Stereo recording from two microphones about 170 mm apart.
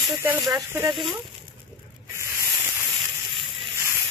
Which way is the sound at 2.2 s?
15° right (ahead or behind).